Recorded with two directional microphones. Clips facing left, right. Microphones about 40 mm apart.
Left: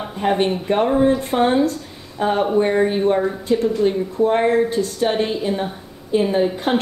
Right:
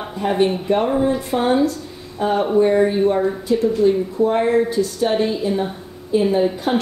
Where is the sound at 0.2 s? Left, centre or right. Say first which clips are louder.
Left 2 dB; left.